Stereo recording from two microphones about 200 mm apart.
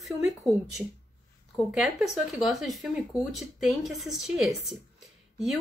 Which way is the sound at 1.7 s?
Centre (ahead or behind).